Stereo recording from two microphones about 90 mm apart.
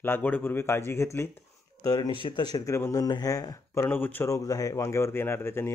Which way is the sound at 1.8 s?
45° left (ahead or behind).